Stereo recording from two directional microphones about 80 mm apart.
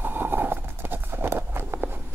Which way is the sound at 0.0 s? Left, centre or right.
Right.